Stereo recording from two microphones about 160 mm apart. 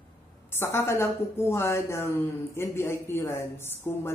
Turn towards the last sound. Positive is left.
turn(degrees=15)  # may be behind; listen again after turning